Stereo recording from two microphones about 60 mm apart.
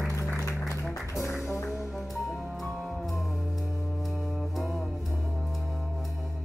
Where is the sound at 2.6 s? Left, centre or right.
Centre.